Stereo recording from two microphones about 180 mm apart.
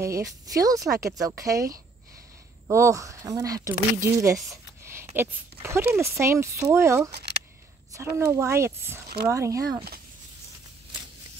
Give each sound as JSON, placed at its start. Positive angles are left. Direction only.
{"t": 0.0, "sound": "speech", "side_deg": -20}
{"t": 7.1, "sound": "a sound", "side_deg": -65}
{"t": 7.9, "sound": "speech", "side_deg": -15}